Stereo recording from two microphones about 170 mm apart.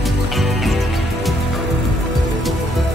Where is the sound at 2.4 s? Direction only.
Centre (ahead or behind).